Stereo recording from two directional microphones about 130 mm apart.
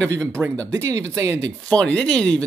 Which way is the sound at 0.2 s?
20° right (ahead or behind).